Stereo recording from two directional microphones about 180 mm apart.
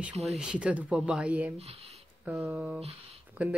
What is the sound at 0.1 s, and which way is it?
Speech, 35° right (ahead or behind).